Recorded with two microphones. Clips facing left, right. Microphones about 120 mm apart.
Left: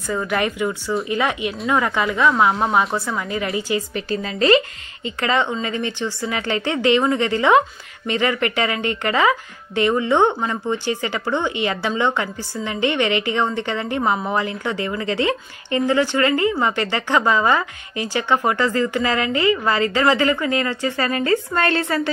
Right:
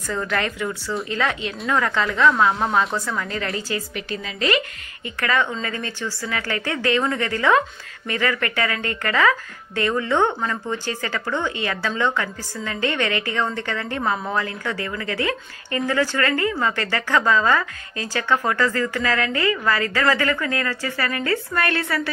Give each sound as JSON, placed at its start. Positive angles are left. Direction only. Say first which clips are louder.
{"t": 0.1, "sound": "a woman's voice", "louder": "left 3 dB", "side_deg": 15}
{"t": 3.9, "sound": "a woman's voice", "louder": "left 5 dB", "side_deg": 35}